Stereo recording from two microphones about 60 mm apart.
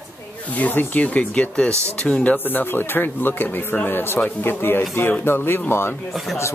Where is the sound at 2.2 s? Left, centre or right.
Left.